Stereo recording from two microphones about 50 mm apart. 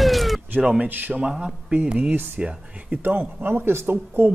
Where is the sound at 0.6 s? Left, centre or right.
Right.